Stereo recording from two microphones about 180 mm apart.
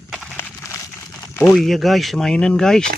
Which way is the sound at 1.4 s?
5° left (ahead or behind).